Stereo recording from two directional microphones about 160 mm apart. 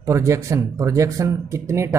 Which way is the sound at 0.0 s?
20° right (ahead or behind).